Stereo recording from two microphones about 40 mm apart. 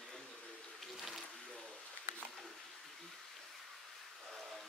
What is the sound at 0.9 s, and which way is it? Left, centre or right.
Water, centre.